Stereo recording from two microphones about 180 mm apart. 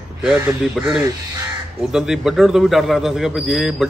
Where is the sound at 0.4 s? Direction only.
5° right (ahead or behind).